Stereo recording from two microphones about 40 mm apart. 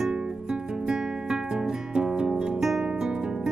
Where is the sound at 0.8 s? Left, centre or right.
Centre.